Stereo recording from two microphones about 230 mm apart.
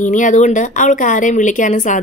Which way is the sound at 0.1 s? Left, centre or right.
Left.